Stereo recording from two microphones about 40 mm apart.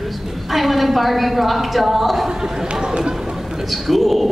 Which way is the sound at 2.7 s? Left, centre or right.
Centre.